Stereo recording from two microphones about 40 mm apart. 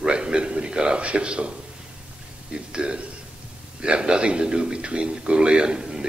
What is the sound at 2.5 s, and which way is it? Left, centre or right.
A man's voice, right.